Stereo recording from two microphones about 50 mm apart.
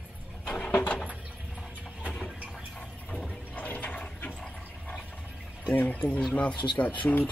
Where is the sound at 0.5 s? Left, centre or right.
Left.